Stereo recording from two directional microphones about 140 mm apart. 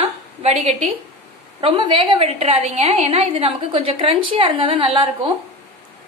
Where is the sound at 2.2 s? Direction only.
45° right (ahead or behind).